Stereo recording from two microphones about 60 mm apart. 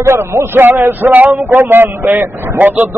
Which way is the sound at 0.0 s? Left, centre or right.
Right.